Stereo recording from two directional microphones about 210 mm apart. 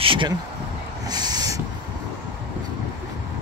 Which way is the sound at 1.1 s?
20° right (ahead or behind).